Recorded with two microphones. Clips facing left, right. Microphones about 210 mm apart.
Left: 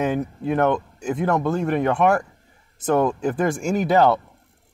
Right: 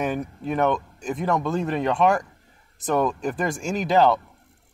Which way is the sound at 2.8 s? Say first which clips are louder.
Left 3 dB; 25° left (ahead or behind).